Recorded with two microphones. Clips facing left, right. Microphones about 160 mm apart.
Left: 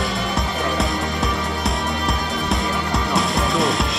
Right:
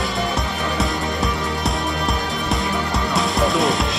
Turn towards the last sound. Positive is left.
turn(degrees=0)  # may be behind; listen again after turning